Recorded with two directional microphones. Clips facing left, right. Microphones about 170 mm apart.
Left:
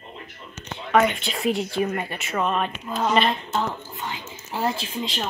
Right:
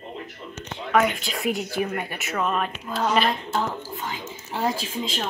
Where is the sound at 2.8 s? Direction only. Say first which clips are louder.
Even; 5° left (ahead or behind).